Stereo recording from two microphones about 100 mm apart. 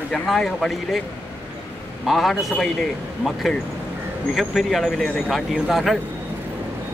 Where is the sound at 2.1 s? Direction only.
Centre (ahead or behind).